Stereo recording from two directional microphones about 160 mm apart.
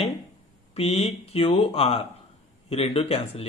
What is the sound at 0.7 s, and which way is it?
Speech, 40° left (ahead or behind).